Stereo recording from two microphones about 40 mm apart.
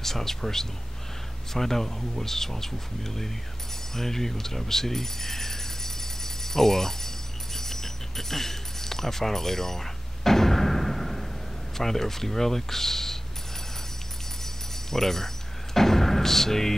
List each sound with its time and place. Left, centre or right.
0.0 s speech: centre
7.5 s keys jangling: centre
11.7 s speech: centre
14.4 s a sound: centre